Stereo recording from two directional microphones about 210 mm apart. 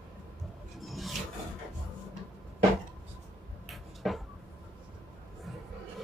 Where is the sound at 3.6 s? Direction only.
Centre (ahead or behind).